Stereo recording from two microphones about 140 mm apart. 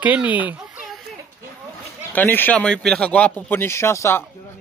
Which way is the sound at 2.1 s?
15° left (ahead or behind).